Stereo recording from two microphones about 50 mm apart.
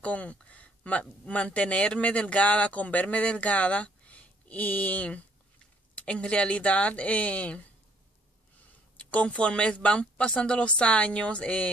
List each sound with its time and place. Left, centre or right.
0.0 s a sound: left
1.2 s a man's voice: left
8.9 s a man's voice: left